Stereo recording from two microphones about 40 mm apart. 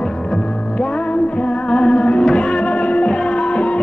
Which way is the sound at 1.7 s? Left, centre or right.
Left.